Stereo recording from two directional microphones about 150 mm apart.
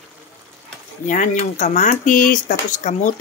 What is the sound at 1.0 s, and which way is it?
Speech, 55° left (ahead or behind).